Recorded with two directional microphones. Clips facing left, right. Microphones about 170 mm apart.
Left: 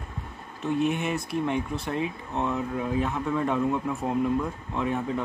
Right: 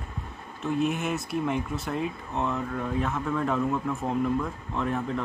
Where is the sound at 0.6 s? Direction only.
Centre (ahead or behind).